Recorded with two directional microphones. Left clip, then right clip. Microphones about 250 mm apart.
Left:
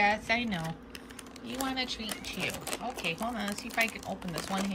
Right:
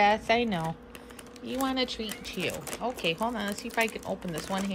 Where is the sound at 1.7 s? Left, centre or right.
Centre.